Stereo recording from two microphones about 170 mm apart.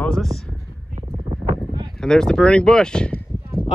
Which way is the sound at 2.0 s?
5° left (ahead or behind).